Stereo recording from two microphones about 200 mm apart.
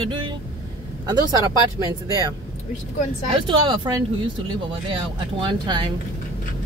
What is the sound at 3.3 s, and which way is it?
Speech, 25° right (ahead or behind).